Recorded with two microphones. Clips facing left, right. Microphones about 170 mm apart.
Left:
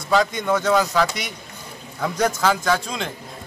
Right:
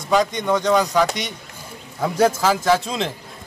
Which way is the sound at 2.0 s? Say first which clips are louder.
Right 4 dB; 30° right (ahead or behind).